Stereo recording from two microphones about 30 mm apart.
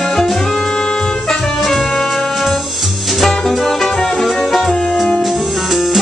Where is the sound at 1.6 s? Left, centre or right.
Centre.